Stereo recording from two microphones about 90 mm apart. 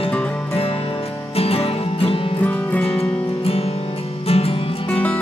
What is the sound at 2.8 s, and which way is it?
Music, 90° left.